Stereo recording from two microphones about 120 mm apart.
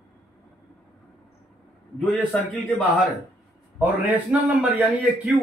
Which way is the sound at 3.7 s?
15° right (ahead or behind).